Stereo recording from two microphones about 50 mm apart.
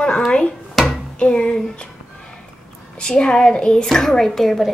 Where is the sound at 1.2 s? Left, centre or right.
Centre.